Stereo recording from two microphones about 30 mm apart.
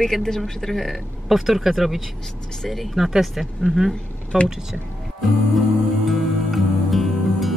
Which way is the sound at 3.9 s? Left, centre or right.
Left.